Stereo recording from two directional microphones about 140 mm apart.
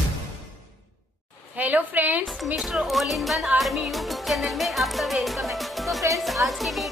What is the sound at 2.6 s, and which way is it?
Speech, centre (ahead or behind).